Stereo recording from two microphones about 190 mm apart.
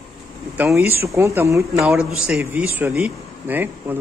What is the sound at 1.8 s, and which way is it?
A man's voice, centre (ahead or behind).